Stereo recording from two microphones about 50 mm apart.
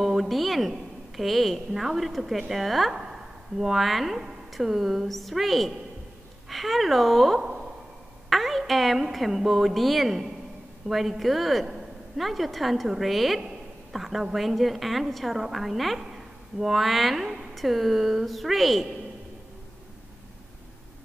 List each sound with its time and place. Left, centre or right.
0.0 s a woman's voice: centre
7.3 s a sound: centre
8.3 s a woman's voice: centre